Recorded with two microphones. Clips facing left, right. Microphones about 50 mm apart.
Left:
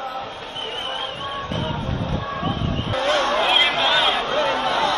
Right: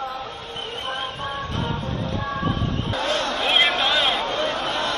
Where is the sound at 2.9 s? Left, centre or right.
Left.